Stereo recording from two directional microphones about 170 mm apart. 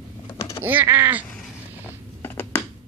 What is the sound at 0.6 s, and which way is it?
Speech, 10° right (ahead or behind).